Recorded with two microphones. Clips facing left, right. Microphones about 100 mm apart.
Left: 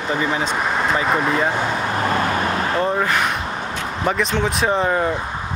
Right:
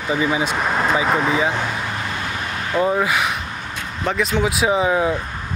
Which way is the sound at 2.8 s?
5° right (ahead or behind).